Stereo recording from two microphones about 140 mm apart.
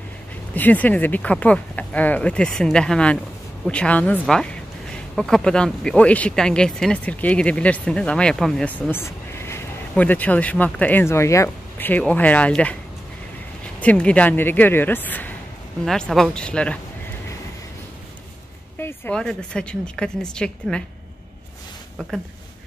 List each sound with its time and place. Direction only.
0.6 s speech: 10° left (ahead or behind)
13.7 s speech: 10° left (ahead or behind)
18.8 s a sound: 15° left (ahead or behind)
19.1 s a woman's voice: 5° left (ahead or behind)